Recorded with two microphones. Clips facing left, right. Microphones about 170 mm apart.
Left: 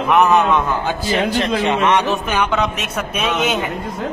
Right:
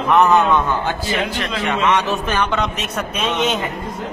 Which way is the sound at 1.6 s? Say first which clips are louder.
Right 1 dB; 20° left (ahead or behind).